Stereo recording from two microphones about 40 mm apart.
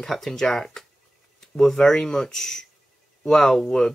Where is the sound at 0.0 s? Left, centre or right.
Centre.